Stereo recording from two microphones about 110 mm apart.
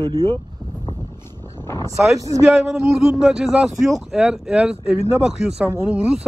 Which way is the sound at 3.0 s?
5° right (ahead or behind).